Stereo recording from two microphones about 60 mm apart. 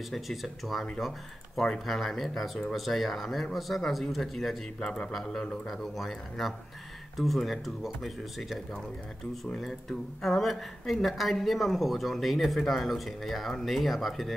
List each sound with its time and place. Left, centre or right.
0.1 s a woman's voice: centre
4.7 s a woman's voice: centre
9.6 s a woman's voice: centre